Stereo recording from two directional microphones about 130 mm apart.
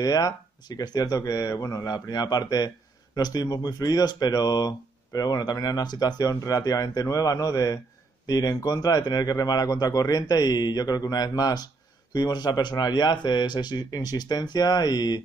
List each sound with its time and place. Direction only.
0.0 s speech: 30° left (ahead or behind)